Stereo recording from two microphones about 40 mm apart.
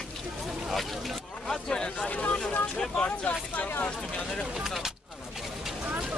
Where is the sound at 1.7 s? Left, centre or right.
Centre.